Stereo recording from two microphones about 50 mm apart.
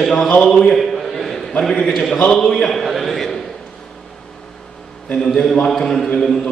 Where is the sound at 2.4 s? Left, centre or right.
Centre.